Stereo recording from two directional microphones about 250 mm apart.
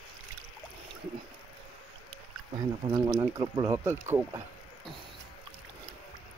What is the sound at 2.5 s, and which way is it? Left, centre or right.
Speech, centre.